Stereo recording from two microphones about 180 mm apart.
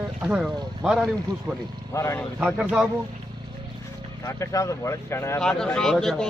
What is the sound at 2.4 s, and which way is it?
Speech, 5° right (ahead or behind).